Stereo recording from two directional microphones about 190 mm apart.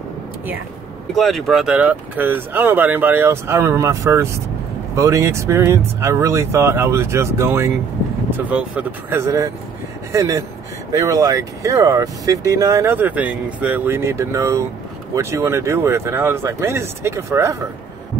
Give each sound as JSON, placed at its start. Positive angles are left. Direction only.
{"t": 1.1, "sound": "speech", "side_deg": 0}